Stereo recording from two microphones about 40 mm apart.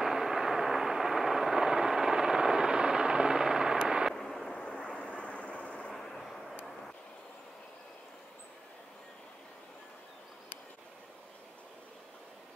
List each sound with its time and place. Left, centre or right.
0.0 s vehicle: centre
4.1 s fireworks: centre
4.6 s vehicle: left
5.9 s vehicle: centre